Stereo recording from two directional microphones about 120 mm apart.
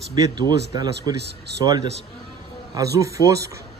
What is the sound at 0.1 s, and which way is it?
Speech, 35° right (ahead or behind).